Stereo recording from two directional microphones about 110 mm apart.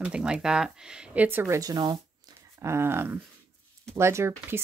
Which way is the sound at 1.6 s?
35° right (ahead or behind).